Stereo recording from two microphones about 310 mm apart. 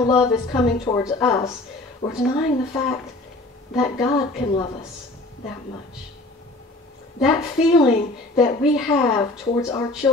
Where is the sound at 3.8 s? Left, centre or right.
Centre.